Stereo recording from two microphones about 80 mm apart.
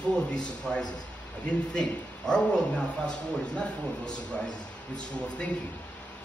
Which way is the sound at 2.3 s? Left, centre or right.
Centre.